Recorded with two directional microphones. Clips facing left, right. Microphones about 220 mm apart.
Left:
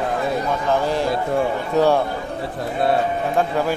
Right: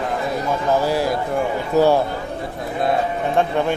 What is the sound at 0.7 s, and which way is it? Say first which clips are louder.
Speech: right 2 dB; 5° right (ahead or behind).